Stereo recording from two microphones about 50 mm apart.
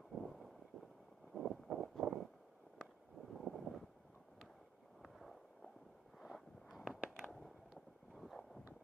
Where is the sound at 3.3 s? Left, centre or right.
Centre.